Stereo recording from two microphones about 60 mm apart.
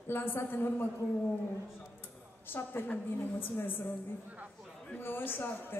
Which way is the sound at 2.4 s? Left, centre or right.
Left.